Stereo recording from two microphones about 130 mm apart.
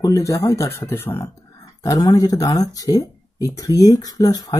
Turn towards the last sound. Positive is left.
turn(degrees=30)  # may be behind; listen again after turning